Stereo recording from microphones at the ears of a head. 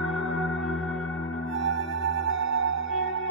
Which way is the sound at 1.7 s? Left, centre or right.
Right.